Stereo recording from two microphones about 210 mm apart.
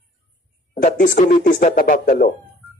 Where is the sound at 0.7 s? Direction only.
40° left (ahead or behind).